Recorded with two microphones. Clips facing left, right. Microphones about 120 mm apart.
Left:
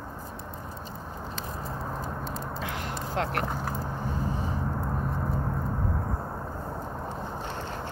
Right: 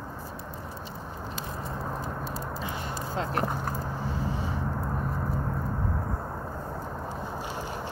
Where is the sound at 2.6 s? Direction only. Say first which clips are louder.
Even; 90° left.